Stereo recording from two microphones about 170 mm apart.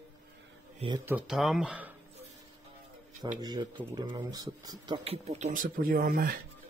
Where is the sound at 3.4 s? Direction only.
25° right (ahead or behind).